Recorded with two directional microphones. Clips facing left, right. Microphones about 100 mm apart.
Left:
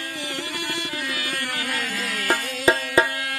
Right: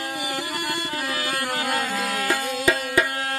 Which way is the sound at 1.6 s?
35° right (ahead or behind).